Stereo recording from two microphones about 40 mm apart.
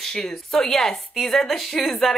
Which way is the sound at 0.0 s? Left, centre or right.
Centre.